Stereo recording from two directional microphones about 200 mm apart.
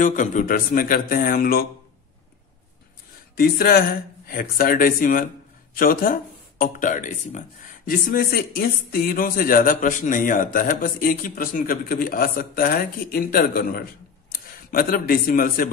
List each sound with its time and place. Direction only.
0.0 s speech: 40° left (ahead or behind)
3.3 s speech: 50° left (ahead or behind)